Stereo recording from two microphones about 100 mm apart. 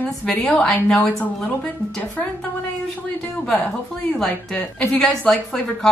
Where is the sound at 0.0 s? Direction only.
10° left (ahead or behind).